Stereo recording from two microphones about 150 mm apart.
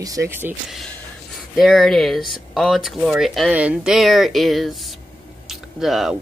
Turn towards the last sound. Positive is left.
turn(degrees=0)  # may be behind; listen again after turning